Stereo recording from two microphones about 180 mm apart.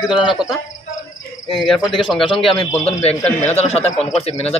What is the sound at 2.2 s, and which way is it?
A man's voice, 30° left (ahead or behind).